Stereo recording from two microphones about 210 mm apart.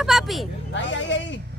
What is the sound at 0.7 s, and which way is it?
Speech, 60° left (ahead or behind).